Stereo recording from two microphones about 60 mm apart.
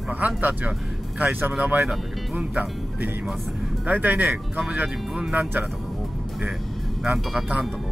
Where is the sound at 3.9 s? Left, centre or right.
Right.